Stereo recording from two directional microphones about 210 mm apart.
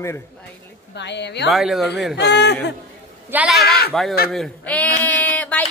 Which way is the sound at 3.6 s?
50° left (ahead or behind).